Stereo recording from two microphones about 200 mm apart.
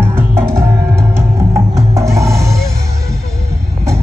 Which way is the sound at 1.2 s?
15° right (ahead or behind).